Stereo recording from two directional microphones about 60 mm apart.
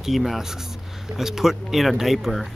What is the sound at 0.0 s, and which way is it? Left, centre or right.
A man's voice, centre.